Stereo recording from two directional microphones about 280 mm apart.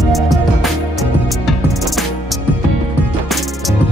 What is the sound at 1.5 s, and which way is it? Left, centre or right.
Music, centre.